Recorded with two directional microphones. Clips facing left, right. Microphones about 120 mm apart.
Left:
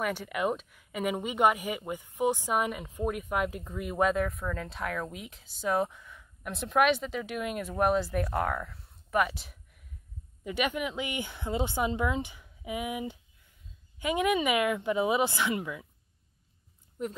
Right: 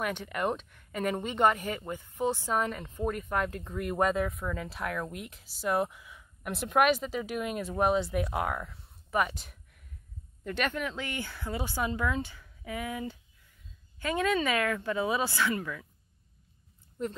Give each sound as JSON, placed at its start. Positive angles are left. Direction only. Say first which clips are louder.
{"t": 0.0, "sound": "speech", "louder": "left 1 dB", "side_deg": 5}
{"t": 17.0, "sound": "speech", "louder": "right 1 dB", "side_deg": 5}